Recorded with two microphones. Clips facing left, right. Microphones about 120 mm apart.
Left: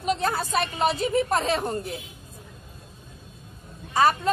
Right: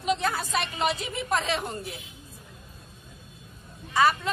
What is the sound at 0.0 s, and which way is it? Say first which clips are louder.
A woman's voice: left 2 dB; 40° left (ahead or behind).